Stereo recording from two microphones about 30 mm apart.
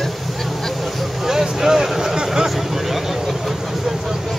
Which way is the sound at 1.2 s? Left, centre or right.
Centre.